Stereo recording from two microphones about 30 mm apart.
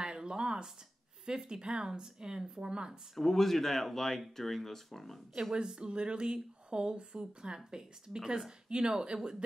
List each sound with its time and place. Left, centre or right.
0.0 s a sound: right
1.2 s speech: right
3.2 s speech: centre
5.5 s speech: centre
5.8 s speech: right